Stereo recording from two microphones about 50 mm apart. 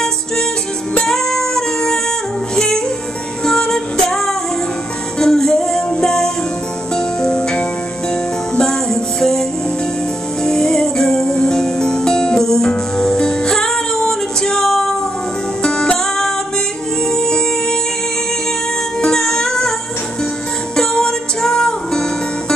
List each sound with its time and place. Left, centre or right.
1.0 s music: centre
18.9 s music: centre
20.7 s music: centre